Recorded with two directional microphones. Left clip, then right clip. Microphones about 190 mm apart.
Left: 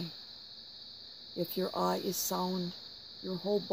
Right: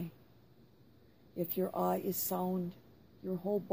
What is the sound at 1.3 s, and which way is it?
Speech, 30° left (ahead or behind).